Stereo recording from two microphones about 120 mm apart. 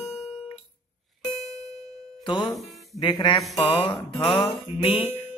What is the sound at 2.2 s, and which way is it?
Speech, 40° left (ahead or behind).